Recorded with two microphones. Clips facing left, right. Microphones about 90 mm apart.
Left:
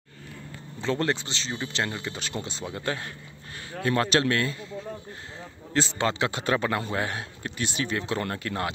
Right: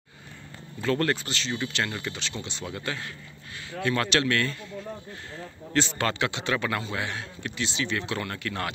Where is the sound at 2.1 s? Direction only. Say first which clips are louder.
Left 2 dB; 45° left (ahead or behind).